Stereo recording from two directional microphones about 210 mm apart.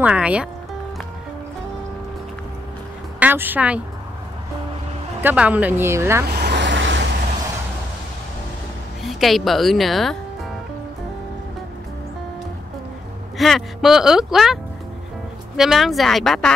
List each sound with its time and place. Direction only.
0.0 s speech: 5° right (ahead or behind)
3.2 s speech: 10° right (ahead or behind)
5.2 s speech: 5° right (ahead or behind)
6.2 s vehicle: 50° right (ahead or behind)
9.0 s speech: centre (ahead or behind)
13.4 s speech: centre (ahead or behind)